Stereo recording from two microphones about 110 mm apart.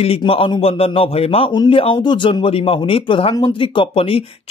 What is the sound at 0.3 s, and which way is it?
Speech, 55° left (ahead or behind).